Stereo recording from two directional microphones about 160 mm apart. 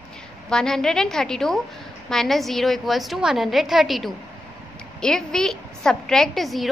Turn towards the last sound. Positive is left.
turn(degrees=0)  # may be behind; listen again after turning